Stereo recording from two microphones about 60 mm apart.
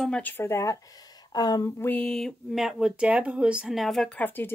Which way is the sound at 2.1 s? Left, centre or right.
Centre.